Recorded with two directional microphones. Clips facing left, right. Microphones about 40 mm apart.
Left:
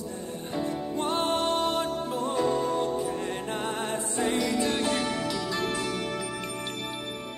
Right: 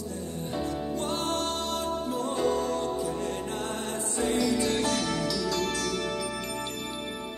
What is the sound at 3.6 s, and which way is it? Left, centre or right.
Music, left.